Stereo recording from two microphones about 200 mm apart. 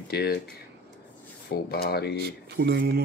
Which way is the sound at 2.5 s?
55° right (ahead or behind).